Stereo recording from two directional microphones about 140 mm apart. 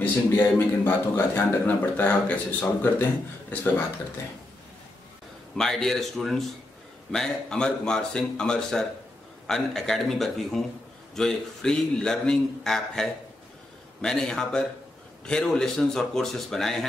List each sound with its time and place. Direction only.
0.0 s a man's voice: 15° left (ahead or behind)
5.6 s a man's voice: 5° left (ahead or behind)